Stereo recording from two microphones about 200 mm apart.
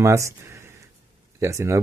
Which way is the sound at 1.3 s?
15° right (ahead or behind).